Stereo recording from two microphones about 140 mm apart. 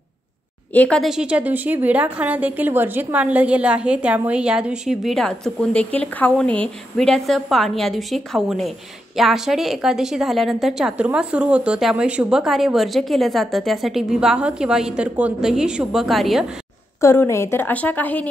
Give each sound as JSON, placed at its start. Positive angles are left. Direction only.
{"t": 0.7, "sound": "a woman's voice", "side_deg": 5}
{"t": 1.1, "sound": "a woman's voice", "side_deg": -10}
{"t": 17.0, "sound": "a woman's voice", "side_deg": 20}